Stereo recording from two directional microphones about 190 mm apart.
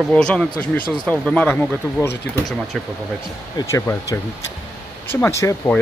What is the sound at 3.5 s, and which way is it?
Speech, 15° left (ahead or behind).